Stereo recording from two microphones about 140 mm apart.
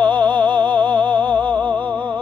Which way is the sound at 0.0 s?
35° right (ahead or behind).